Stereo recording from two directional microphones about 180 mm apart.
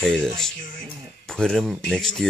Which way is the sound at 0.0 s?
5° left (ahead or behind).